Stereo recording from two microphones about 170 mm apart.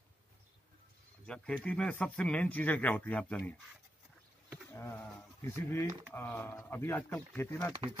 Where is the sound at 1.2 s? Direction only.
5° left (ahead or behind).